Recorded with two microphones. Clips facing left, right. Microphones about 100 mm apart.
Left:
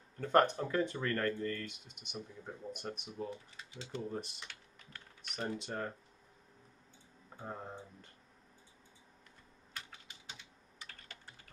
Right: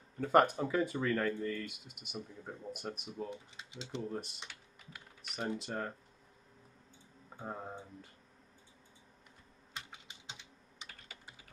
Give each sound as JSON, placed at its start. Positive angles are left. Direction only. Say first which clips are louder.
{"t": 0.2, "sound": "speech", "louder": "right 1 dB", "side_deg": -5}
{"t": 3.3, "sound": "speech", "louder": "even", "side_deg": -20}
{"t": 4.0, "sound": "speech", "louder": "even", "side_deg": 0}
{"t": 4.5, "sound": "typing", "louder": "right 1 dB", "side_deg": -5}
{"t": 5.6, "sound": "speech", "louder": "right 1 dB", "side_deg": 0}
{"t": 7.3, "sound": "speech", "louder": "right 2 dB", "side_deg": -5}
{"t": 9.8, "sound": "typing", "louder": "right 1 dB", "side_deg": -20}
{"t": 10.9, "sound": "typing", "louder": "right 1 dB", "side_deg": -5}